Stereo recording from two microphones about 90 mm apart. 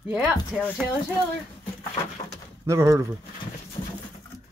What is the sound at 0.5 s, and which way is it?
Speech, centre (ahead or behind).